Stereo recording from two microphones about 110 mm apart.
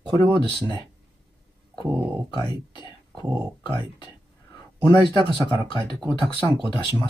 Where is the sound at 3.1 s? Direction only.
25° right (ahead or behind).